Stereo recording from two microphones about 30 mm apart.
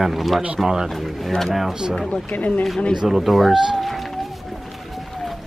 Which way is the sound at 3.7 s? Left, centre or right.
Centre.